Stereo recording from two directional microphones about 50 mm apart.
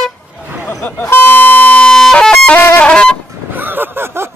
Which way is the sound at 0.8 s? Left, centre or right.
Left.